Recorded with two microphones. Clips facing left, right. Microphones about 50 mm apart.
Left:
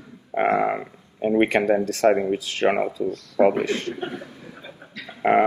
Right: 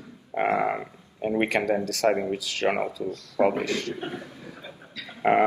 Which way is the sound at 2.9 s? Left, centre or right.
Left.